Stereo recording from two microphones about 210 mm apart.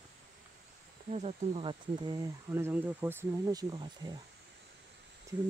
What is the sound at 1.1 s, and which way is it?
Speech, 30° right (ahead or behind).